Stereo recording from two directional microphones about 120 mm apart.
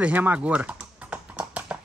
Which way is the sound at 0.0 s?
15° right (ahead or behind).